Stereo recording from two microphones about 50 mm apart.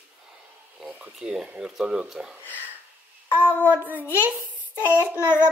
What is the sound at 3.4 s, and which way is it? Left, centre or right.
Child singing, left.